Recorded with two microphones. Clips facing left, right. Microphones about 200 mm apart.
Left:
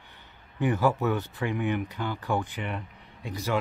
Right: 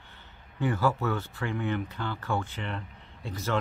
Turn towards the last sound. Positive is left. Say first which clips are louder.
# left 1 dB
turn(degrees=15)  # may be behind; listen again after turning